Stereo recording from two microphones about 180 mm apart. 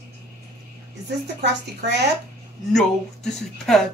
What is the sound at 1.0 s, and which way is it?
A woman's voice, 65° right (ahead or behind).